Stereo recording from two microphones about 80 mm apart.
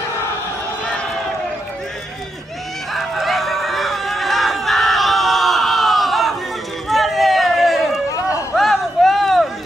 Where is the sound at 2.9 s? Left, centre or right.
Centre.